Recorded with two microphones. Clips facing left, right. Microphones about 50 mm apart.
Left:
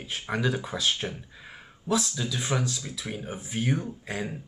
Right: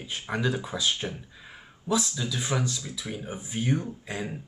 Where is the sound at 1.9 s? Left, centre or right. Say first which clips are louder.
Even; centre.